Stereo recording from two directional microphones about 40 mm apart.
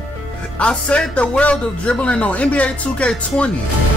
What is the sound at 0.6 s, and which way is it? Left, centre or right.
Speech, left.